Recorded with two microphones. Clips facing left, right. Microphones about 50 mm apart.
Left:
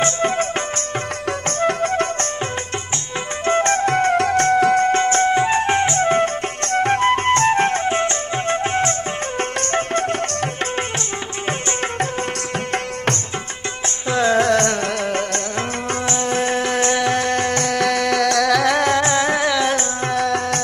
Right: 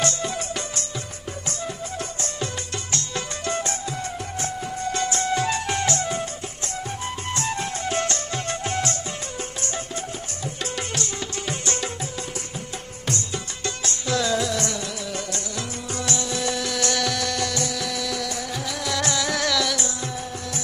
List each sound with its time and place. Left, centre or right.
1.6 s music: left
3.6 s music: left
4.8 s music: left
6.0 s music: left
6.8 s music: left
7.9 s music: left
9.6 s music: left
12.7 s music: left
14.0 s music: left
14.4 s music: left
16.1 s music: left
18.9 s music: left
20.2 s music: left